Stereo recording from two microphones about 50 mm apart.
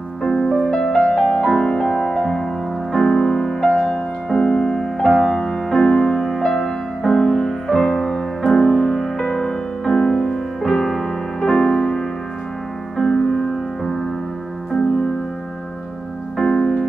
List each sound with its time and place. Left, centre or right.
0.2 s music: centre
16.3 s music: centre